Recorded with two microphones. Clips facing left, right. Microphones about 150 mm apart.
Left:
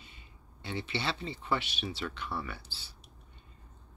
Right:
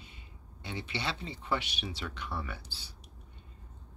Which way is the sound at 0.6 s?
15° right (ahead or behind).